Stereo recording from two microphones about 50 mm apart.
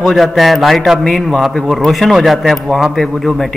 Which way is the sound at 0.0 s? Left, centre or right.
Centre.